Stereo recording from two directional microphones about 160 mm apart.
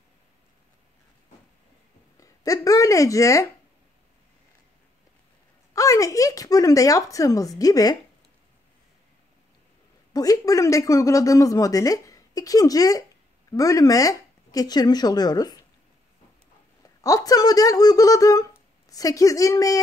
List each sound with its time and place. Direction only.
2.1 s speech: 20° left (ahead or behind)
5.7 s speech: 20° left (ahead or behind)
10.1 s speech: 20° left (ahead or behind)
17.0 s speech: 20° left (ahead or behind)